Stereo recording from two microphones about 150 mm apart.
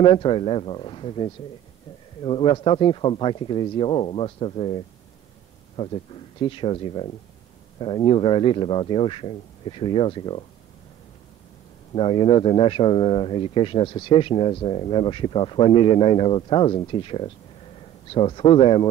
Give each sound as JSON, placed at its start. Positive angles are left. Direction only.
{"t": 0.0, "sound": "speech", "side_deg": 35}
{"t": 11.9, "sound": "speech", "side_deg": 35}